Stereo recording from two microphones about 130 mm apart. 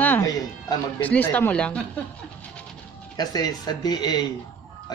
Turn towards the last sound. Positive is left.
turn(degrees=30)  # may be behind; listen again after turning